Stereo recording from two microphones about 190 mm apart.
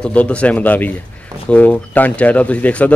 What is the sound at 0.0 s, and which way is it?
A man's voice, 5° left (ahead or behind).